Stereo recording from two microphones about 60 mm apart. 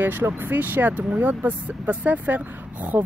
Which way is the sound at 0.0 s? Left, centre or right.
Right.